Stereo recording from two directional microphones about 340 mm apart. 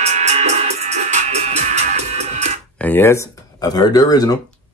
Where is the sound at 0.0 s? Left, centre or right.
Centre.